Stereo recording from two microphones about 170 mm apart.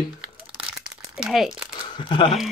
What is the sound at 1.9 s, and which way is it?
Speech, 30° left (ahead or behind).